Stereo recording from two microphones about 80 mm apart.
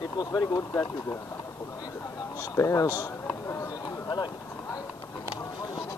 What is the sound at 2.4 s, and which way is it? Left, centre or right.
Speech, left.